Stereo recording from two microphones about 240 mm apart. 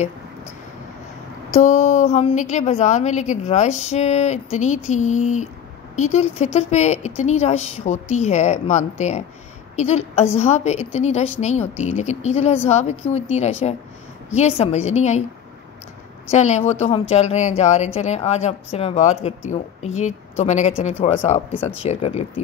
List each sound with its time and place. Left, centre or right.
1.5 s speech: left
16.3 s speech: left